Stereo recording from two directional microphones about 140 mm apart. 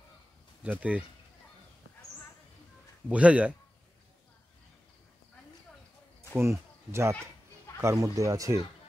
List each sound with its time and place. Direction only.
0.7 s speech: 10° right (ahead or behind)
3.1 s speech: 10° right (ahead or behind)
6.3 s speech: 20° right (ahead or behind)